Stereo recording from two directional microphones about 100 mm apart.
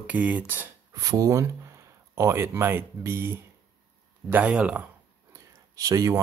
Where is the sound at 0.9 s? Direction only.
35° right (ahead or behind).